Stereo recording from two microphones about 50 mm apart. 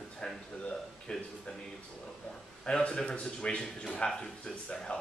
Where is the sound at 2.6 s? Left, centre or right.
Centre.